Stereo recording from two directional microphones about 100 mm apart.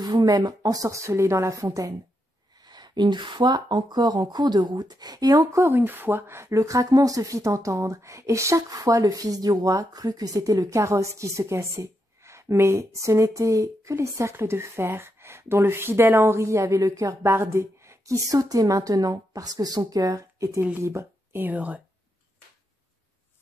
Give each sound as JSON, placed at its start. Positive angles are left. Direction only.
{"t": 0.0, "sound": "speech", "side_deg": -40}
{"t": 2.6, "sound": "speech", "side_deg": -45}